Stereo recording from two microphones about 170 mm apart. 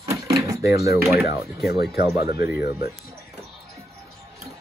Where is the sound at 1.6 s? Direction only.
70° left (ahead or behind).